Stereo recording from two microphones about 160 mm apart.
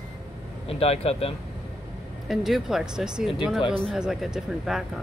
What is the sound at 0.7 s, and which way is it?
Speech, 40° left (ahead or behind).